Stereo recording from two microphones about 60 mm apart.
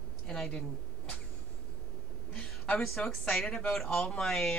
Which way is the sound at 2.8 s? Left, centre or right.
Centre.